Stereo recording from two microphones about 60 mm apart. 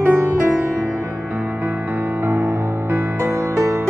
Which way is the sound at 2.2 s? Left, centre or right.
Right.